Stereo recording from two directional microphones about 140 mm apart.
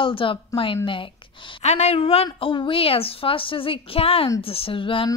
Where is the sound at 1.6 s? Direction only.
50° left (ahead or behind).